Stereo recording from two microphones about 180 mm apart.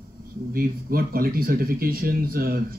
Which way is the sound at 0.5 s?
55° right (ahead or behind).